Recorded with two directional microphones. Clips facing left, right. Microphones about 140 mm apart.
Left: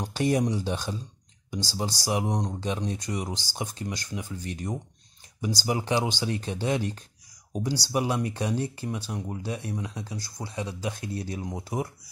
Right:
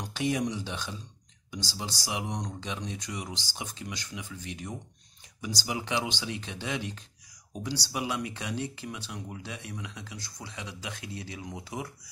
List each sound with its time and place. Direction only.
0.0 s speech: 40° left (ahead or behind)